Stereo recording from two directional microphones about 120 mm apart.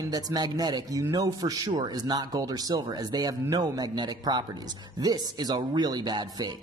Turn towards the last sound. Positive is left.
turn(degrees=-35)  # may be behind; listen again after turning